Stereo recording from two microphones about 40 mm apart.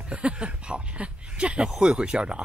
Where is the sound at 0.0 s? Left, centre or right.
Right.